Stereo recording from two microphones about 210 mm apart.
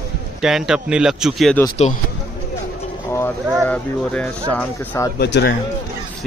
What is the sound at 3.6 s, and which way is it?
Speech, 5° left (ahead or behind).